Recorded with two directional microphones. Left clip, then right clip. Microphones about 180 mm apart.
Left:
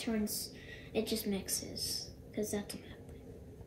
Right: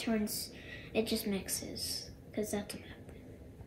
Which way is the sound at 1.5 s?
60° right (ahead or behind).